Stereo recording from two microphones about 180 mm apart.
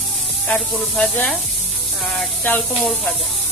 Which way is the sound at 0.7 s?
5° left (ahead or behind).